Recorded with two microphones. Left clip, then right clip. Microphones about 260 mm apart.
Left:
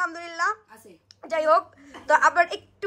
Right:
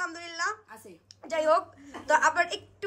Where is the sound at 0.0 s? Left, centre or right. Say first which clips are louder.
Left 6 dB; centre.